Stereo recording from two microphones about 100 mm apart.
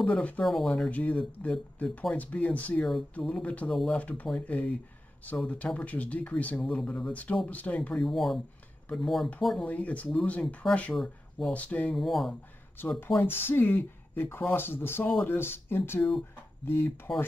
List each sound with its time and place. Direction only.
0.0 s speech: 15° left (ahead or behind)
0.4 s speech: 5° left (ahead or behind)
0.8 s speech: 15° left (ahead or behind)
9.7 s speech: 15° left (ahead or behind)
11.0 s speech: 5° left (ahead or behind)
11.5 s speech: 15° left (ahead or behind)
12.0 s speech: centre (ahead or behind)
13.2 s speech: 20° left (ahead or behind)